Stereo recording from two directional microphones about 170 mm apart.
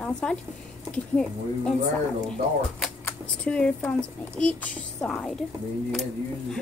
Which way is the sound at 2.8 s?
5° left (ahead or behind).